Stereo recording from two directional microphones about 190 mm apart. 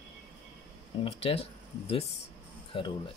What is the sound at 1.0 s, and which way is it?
Speech, 30° left (ahead or behind).